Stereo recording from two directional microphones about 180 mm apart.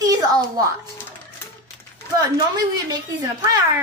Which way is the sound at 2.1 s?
20° right (ahead or behind).